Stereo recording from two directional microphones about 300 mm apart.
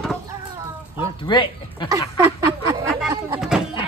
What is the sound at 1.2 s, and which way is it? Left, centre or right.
Speech, centre.